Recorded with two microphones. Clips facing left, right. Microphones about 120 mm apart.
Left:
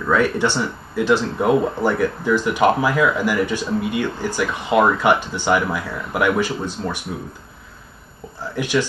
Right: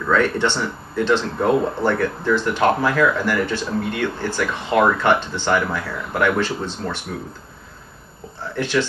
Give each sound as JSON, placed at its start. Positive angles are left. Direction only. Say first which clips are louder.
{"t": 0.1, "sound": "speech", "louder": "left 1 dB", "side_deg": 10}
{"t": 8.5, "sound": "speech", "louder": "even", "side_deg": 10}